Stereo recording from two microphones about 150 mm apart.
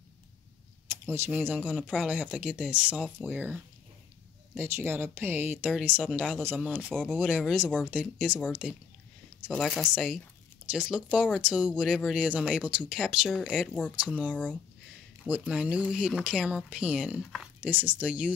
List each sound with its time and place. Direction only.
1.0 s speech: 15° right (ahead or behind)
6.9 s speech: 5° left (ahead or behind)
7.2 s speech: 10° right (ahead or behind)
13.9 s speech: 10° right (ahead or behind)
14.3 s speech: 10° left (ahead or behind)
15.2 s speech: 10° right (ahead or behind)